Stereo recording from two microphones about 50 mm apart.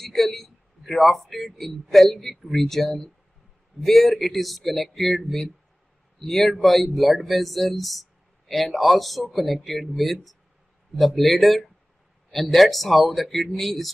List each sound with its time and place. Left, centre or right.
0.0 s a man's voice: centre